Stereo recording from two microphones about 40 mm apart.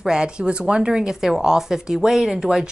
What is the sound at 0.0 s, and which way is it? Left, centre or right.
A woman's voice, centre.